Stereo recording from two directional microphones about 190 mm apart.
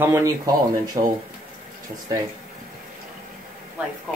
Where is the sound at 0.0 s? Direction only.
15° right (ahead or behind).